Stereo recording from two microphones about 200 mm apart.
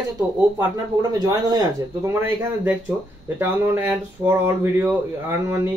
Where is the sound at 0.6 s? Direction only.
15° right (ahead or behind).